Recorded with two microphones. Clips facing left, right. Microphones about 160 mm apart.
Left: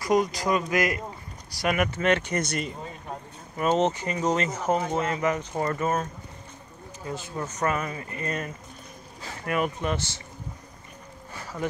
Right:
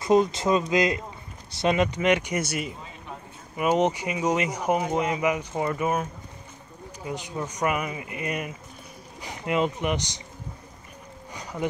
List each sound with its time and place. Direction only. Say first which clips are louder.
0.0 s speech: right 3 dB; 25° right (ahead or behind)
7.1 s speech: right 1 dB; 15° right (ahead or behind)